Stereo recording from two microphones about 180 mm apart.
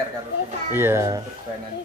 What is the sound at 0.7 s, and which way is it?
Speech, 15° right (ahead or behind).